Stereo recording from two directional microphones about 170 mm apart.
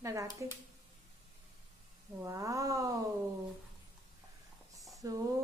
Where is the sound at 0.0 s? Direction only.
20° right (ahead or behind).